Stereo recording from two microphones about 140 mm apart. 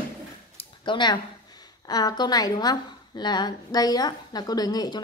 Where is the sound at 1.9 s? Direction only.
30° left (ahead or behind).